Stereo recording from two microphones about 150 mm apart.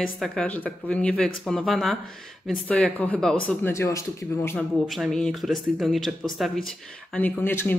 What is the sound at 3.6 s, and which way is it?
Speech, 20° left (ahead or behind).